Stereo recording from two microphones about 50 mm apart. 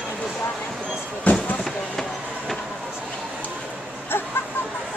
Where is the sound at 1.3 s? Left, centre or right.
Left.